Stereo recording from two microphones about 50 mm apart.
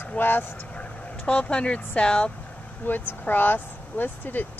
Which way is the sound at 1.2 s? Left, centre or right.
Left.